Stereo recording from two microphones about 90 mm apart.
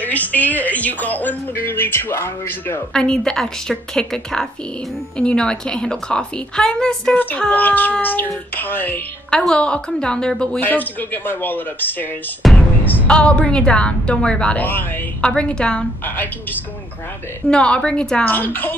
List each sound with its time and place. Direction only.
0.0 s a woman's voice: 20° left (ahead or behind)
2.9 s a woman's voice: 10° left (ahead or behind)
7.2 s a woman's voice: 20° left (ahead or behind)
9.3 s a woman's voice: 5° left (ahead or behind)
10.6 s a woman's voice: 20° left (ahead or behind)
12.4 s music: centre (ahead or behind)
12.8 s a woman's voice: 15° left (ahead or behind)
17.5 s a woman's voice: 10° left (ahead or behind)
18.3 s a woman's voice: 20° left (ahead or behind)